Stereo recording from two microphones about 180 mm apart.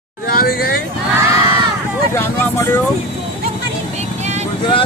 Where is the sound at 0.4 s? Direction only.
55° left (ahead or behind).